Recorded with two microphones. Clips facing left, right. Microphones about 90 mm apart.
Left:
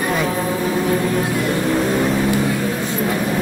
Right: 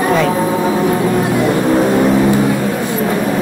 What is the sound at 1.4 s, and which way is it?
Vehicle, 30° right (ahead or behind).